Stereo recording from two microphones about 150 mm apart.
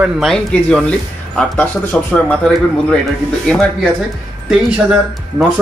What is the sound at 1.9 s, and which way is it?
Speech, 5° left (ahead or behind).